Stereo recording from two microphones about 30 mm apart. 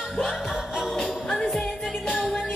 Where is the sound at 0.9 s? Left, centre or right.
Centre.